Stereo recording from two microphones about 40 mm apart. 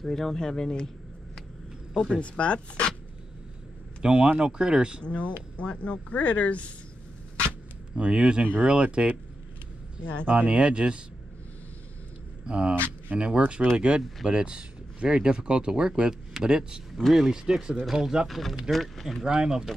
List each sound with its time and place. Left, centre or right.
0.0 s speech: centre
2.0 s speech: left
4.0 s speech: right
5.0 s speech: left
7.9 s speech: right
10.2 s speech: right
12.4 s speech: right
13.1 s speech: right
13.7 s speech: right
18.3 s speech: centre
19.2 s speech: right